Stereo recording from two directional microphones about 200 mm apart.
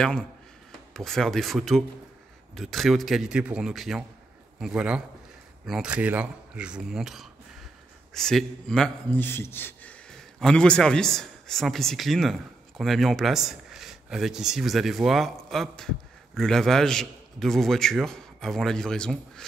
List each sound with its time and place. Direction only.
0.7 s a man's voice: centre (ahead or behind)